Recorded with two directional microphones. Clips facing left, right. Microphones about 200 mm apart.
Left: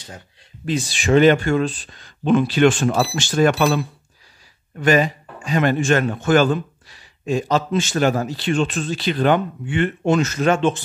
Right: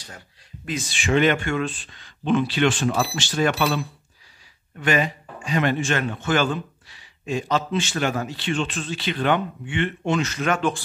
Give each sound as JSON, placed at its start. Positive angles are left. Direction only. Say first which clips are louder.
{"t": 0.7, "sound": "a man's voice", "louder": "left 5 dB", "side_deg": 35}
{"t": 10.5, "sound": "speech", "louder": "left 4 dB", "side_deg": 25}